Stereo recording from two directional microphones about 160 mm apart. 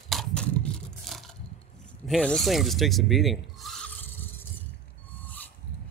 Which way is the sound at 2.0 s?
5° left (ahead or behind).